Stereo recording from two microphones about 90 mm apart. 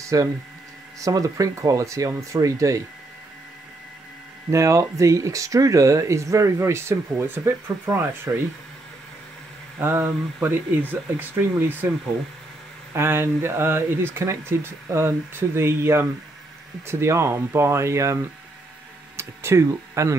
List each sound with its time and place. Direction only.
0.0 s speech: 40° right (ahead or behind)
4.5 s speech: 35° right (ahead or behind)
9.8 s speech: 25° right (ahead or behind)
12.9 s speech: 30° right (ahead or behind)